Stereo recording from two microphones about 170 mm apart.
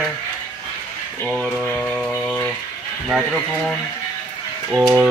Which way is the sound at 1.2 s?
Centre (ahead or behind).